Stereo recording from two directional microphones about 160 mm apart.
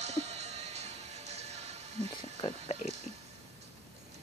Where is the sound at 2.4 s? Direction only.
30° left (ahead or behind).